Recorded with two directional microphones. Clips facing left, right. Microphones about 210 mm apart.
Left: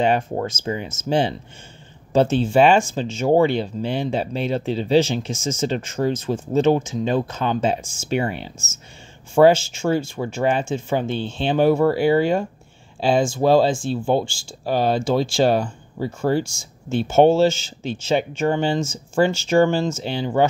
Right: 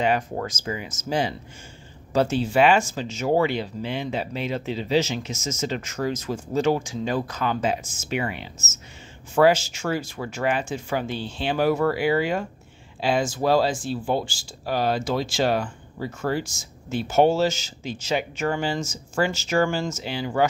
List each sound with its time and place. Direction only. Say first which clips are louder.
0.0 s speech: left 4 dB; 25° left (ahead or behind)